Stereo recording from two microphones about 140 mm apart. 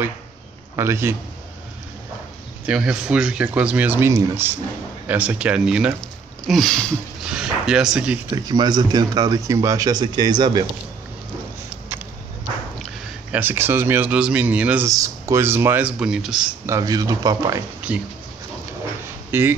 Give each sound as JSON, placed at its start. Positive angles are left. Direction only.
{"t": 0.7, "sound": "speech", "side_deg": -20}
{"t": 2.6, "sound": "speech", "side_deg": -10}
{"t": 8.3, "sound": "speech", "side_deg": -30}
{"t": 13.3, "sound": "speech", "side_deg": -15}
{"t": 14.9, "sound": "speech", "side_deg": -20}
{"t": 16.6, "sound": "speech", "side_deg": -25}
{"t": 17.9, "sound": "speech", "side_deg": -10}
{"t": 19.3, "sound": "speech", "side_deg": -15}